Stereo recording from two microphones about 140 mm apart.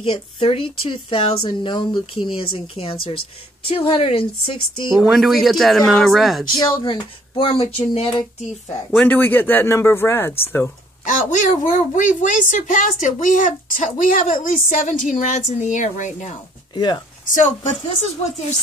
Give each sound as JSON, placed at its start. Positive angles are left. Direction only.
{"t": 0.0, "sound": "a woman's voice", "side_deg": 40}
{"t": 5.1, "sound": "speech", "side_deg": 0}
{"t": 6.5, "sound": "speech", "side_deg": 30}
{"t": 8.6, "sound": "speech", "side_deg": 15}
{"t": 11.1, "sound": "a woman's voice", "side_deg": 65}
{"t": 16.7, "sound": "speech", "side_deg": 30}
{"t": 17.3, "sound": "a woman's voice", "side_deg": 60}